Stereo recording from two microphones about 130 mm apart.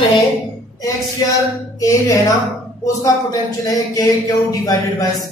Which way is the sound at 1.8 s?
25° left (ahead or behind).